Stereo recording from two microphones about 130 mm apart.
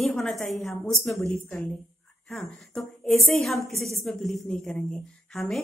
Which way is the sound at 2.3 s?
5° left (ahead or behind).